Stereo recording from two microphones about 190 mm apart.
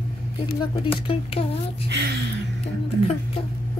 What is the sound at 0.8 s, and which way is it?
Speech, 30° left (ahead or behind).